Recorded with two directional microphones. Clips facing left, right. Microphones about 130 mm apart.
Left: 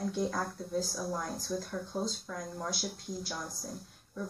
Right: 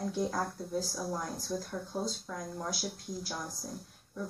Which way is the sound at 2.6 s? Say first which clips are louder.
Even; centre (ahead or behind).